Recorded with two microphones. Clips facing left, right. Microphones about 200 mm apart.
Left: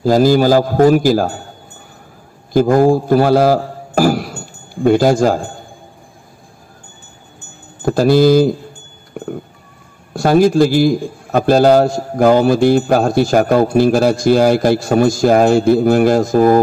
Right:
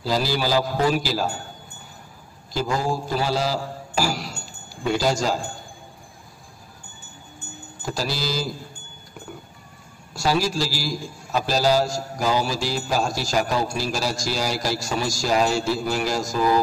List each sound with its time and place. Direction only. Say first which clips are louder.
0.0 s a man's voice: left 13 dB; 50° left (ahead or behind)
2.5 s a man's voice: left 14 dB; 55° left (ahead or behind)
7.8 s a man's voice: left 17 dB; 55° left (ahead or behind)
9.1 s a sound: left 14 dB; 55° left (ahead or behind)
10.1 s a man's voice: left 12 dB; 55° left (ahead or behind)